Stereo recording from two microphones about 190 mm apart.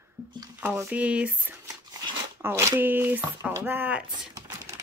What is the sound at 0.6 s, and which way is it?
Speech, 10° right (ahead or behind).